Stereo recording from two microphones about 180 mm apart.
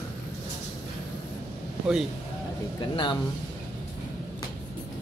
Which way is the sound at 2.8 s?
25° left (ahead or behind).